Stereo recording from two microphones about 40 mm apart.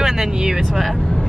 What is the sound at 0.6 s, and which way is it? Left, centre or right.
Speech, centre.